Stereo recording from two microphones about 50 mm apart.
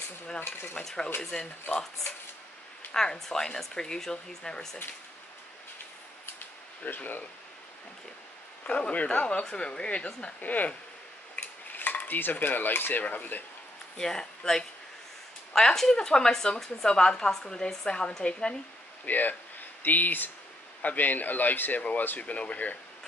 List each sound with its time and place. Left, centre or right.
0.4 s stir: left
0.8 s speech: centre
2.9 s speech: centre
7.0 s speech: left
8.8 s speech: left
9.4 s speech: centre
10.4 s speech: left
11.7 s cutlery: left
13.0 s speech: left
13.9 s speech: centre
19.0 s speech: left